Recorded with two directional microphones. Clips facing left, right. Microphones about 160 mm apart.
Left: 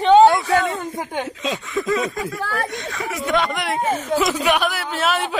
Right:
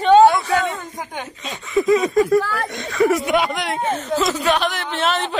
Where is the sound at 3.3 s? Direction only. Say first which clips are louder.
Right 1 dB; 5° right (ahead or behind).